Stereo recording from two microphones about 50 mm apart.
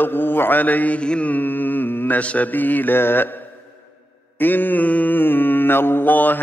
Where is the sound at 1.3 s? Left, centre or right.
Left.